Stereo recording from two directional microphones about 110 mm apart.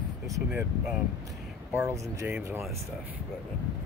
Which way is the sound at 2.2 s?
20° right (ahead or behind).